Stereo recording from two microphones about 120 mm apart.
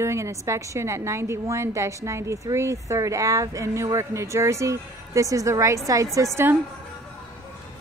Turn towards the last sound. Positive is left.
turn(degrees=-20)  # may be behind; listen again after turning